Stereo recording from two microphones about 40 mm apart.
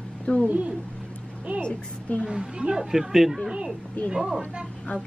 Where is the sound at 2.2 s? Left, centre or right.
Right.